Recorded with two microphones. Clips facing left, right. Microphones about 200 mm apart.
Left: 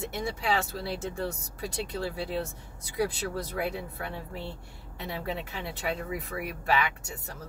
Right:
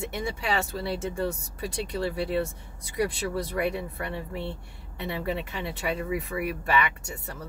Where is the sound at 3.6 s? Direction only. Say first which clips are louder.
Right 4 dB; 65° right (ahead or behind).